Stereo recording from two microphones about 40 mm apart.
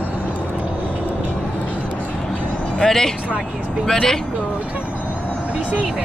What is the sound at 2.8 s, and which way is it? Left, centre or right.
Speech, centre.